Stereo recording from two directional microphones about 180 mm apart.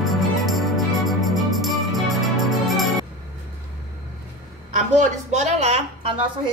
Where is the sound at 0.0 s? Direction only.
Centre (ahead or behind).